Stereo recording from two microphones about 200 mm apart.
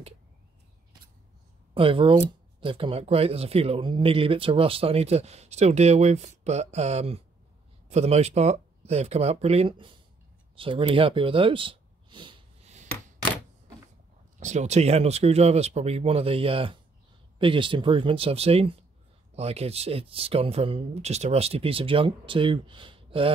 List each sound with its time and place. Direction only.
1.7 s speech: 25° right (ahead or behind)
10.5 s a sound: 25° right (ahead or behind)
14.4 s speech: 35° right (ahead or behind)